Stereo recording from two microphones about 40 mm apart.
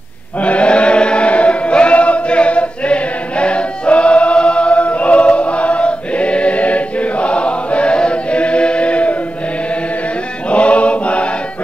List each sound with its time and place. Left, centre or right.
0.4 s chant: left
10.5 s mantra: left